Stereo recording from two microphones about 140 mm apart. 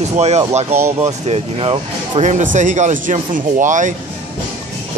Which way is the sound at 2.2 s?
65° right (ahead or behind).